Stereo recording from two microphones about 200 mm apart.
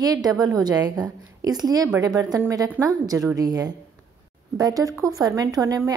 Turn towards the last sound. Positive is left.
turn(degrees=-20)  # may be behind; listen again after turning